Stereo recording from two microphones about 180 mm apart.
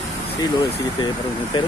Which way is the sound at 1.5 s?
25° left (ahead or behind).